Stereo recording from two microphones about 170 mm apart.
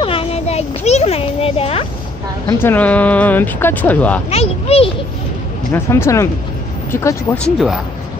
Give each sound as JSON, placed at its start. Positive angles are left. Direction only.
{"t": 0.0, "sound": "a sound", "side_deg": 35}
{"t": 2.6, "sound": "speech", "side_deg": 10}
{"t": 4.3, "sound": "speech", "side_deg": 35}
{"t": 5.7, "sound": "speech", "side_deg": 15}
{"t": 7.4, "sound": "speech", "side_deg": 0}